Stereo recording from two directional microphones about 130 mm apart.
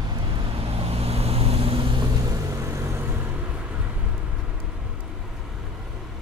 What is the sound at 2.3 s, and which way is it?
Vehicle, 25° right (ahead or behind).